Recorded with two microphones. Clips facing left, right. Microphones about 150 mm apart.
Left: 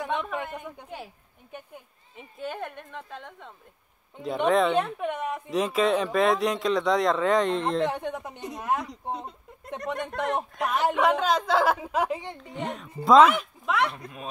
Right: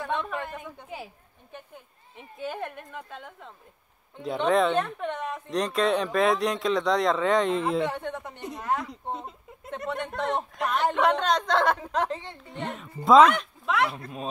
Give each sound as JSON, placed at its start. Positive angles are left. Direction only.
{"t": 0.0, "sound": "a sound", "side_deg": 15}
{"t": 0.3, "sound": "speech", "side_deg": 0}
{"t": 2.1, "sound": "speech", "side_deg": 0}
{"t": 7.9, "sound": "a woman's voice", "side_deg": 15}
{"t": 8.8, "sound": "speech", "side_deg": 0}
{"t": 12.4, "sound": "speech", "side_deg": 0}